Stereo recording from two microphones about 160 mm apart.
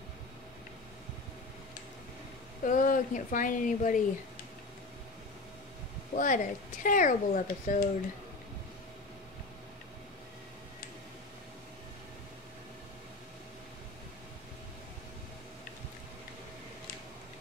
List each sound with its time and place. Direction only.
2.6 s speech: 55° left (ahead or behind)
6.1 s speech: 55° left (ahead or behind)